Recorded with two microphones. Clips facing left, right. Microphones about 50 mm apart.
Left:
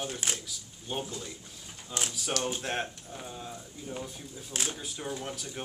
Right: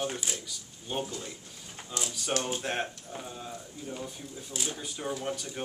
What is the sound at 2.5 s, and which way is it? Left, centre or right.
Speech, centre.